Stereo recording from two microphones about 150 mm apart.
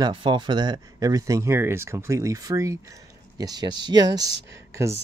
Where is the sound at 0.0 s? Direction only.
35° right (ahead or behind).